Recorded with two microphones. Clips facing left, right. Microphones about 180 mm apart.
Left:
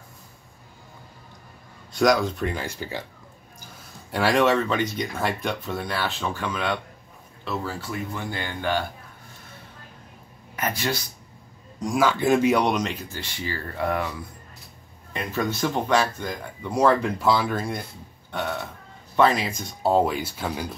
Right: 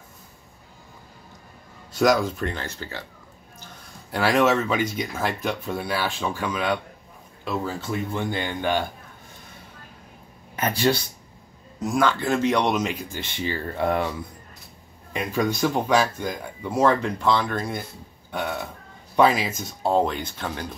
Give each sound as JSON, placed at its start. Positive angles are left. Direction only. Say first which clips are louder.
{"t": 1.9, "sound": "speech", "louder": "even", "side_deg": 0}
{"t": 2.5, "sound": "speech", "louder": "left 3 dB", "side_deg": 10}
{"t": 4.1, "sound": "speech", "louder": "even", "side_deg": 0}
{"t": 7.4, "sound": "speech", "louder": "right 2 dB", "side_deg": -20}
{"t": 10.5, "sound": "speech", "louder": "right 5 dB", "side_deg": -30}
{"t": 11.8, "sound": "speech", "louder": "even", "side_deg": 5}
{"t": 12.2, "sound": "speech", "louder": "left 2 dB", "side_deg": 15}
{"t": 13.2, "sound": "speech", "louder": "right 6 dB", "side_deg": -25}
{"t": 15.1, "sound": "speech", "louder": "right 3 dB", "side_deg": -10}
{"t": 19.1, "sound": "speech", "louder": "right 1 dB", "side_deg": -5}